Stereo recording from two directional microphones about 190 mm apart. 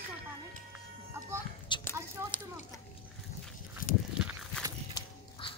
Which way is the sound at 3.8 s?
45° left (ahead or behind).